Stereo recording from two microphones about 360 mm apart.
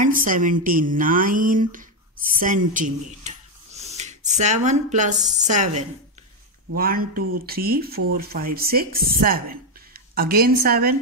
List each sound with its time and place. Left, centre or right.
0.0 s speech: right